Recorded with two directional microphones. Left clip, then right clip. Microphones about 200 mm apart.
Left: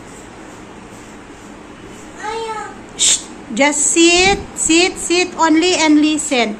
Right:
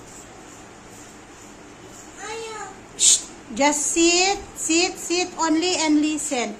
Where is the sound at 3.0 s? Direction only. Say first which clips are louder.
Left 4 dB; 5° right (ahead or behind).